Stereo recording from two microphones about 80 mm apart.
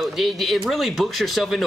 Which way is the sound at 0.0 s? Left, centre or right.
Centre.